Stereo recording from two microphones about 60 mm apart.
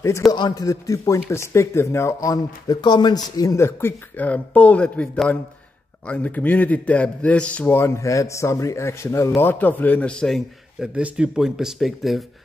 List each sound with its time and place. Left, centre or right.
0.3 s a man's voice: left
1.3 s a man's voice: left
2.1 s speech: left
3.5 s a man's voice: left
4.2 s a man's voice: left
7.7 s a man's voice: left
9.4 s a man's voice: left
11.0 s speech: centre